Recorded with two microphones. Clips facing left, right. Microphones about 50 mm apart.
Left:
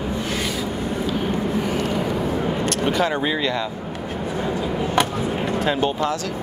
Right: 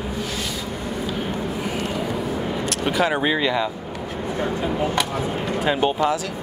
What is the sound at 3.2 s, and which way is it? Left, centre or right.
Speech, centre.